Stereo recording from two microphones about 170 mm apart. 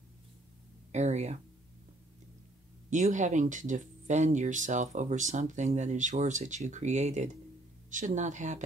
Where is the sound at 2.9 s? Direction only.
45° right (ahead or behind).